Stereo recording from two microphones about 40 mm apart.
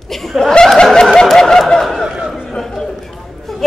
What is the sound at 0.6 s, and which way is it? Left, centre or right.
Snicker, centre.